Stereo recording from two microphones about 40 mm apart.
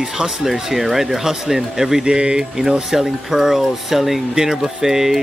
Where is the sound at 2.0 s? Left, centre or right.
Right.